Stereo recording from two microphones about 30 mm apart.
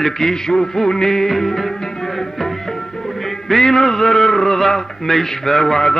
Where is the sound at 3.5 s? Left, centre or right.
Centre.